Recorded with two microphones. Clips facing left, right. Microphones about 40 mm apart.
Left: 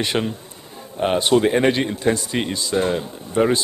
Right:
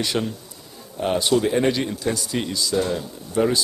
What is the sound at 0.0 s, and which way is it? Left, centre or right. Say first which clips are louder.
Speech: left 2 dB; left.